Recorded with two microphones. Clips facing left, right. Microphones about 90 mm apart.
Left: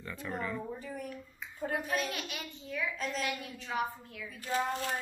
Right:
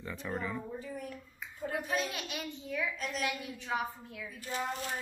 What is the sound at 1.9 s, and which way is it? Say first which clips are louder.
Speech: even; 15° right (ahead or behind).